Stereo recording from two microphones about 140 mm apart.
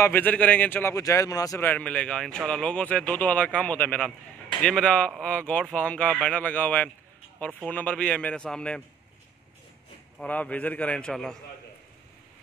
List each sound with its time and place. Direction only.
0.0 s a man's voice: 15° left (ahead or behind)
1.6 s a man's voice: 10° left (ahead or behind)
10.1 s a man's voice: 10° left (ahead or behind)